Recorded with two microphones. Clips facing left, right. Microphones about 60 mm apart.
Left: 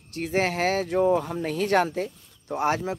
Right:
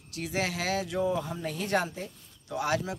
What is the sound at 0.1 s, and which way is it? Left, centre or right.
Speech, left.